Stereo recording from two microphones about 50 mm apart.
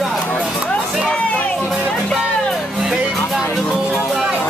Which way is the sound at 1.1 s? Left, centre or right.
Left.